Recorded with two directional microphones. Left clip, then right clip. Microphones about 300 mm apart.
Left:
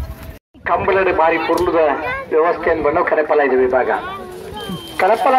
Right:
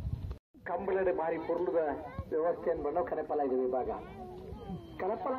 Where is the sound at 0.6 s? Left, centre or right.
Centre.